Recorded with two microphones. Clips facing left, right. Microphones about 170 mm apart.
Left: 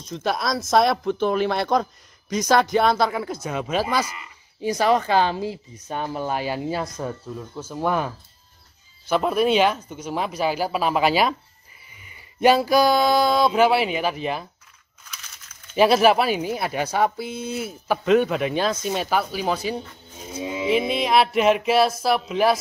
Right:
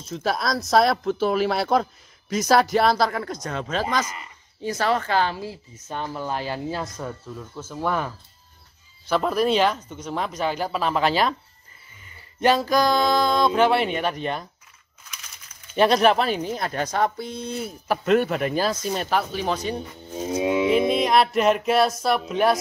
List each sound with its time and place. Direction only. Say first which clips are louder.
0.0 s speech: even; 5° right (ahead or behind)
9.1 s speech: left 1 dB; 5° left (ahead or behind)
15.7 s speech: left 2 dB; 5° left (ahead or behind)
20.2 s music: right 7 dB; 65° right (ahead or behind)
20.7 s speech: left 2 dB; centre (ahead or behind)